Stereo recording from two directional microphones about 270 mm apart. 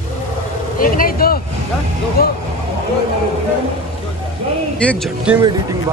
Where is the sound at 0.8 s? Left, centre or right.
Left.